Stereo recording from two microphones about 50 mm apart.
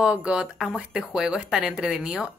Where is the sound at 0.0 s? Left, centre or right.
Centre.